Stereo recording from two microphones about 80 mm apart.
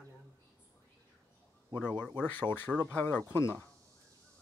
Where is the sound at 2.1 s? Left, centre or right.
Left.